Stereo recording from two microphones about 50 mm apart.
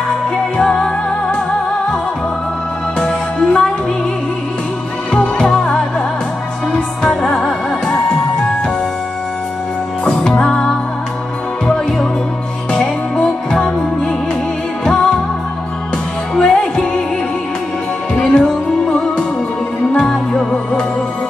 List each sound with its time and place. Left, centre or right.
0.6 s music: centre
3.0 s music: centre
5.1 s music: centre
10.0 s music: centre
16.3 s music: centre
18.1 s music: left